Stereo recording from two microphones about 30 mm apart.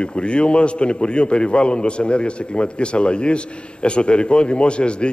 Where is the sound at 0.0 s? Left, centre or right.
Left.